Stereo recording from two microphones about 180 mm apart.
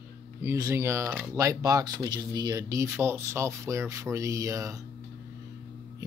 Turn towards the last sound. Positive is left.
turn(degrees=-15)  # may be behind; listen again after turning